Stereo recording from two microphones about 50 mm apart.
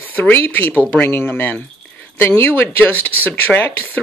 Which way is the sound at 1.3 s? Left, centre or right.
Left.